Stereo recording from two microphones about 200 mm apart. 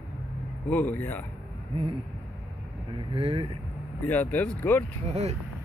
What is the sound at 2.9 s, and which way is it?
Speech, 25° right (ahead or behind).